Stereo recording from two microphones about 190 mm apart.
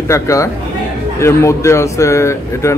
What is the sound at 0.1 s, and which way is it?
Speech, 15° left (ahead or behind).